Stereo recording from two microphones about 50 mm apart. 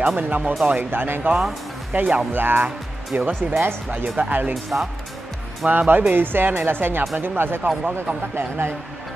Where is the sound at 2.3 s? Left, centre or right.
Right.